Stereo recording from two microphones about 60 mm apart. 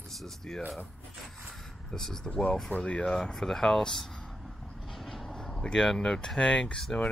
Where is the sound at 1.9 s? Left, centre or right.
Centre.